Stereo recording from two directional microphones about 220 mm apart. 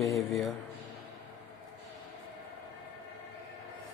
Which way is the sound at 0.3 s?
Centre (ahead or behind).